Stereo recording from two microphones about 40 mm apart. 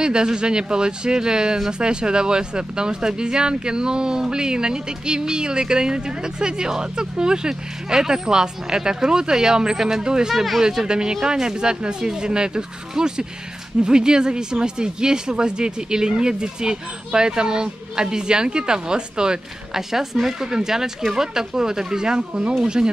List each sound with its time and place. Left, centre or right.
0.0 s speech: centre
10.0 s speech: centre
10.3 s speech: centre
10.6 s speech: centre